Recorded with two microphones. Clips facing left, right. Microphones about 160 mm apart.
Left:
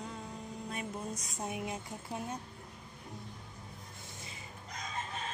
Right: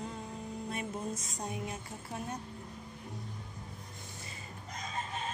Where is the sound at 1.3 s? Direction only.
5° left (ahead or behind).